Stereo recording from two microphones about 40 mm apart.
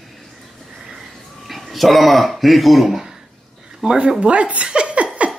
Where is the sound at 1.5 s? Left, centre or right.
Centre.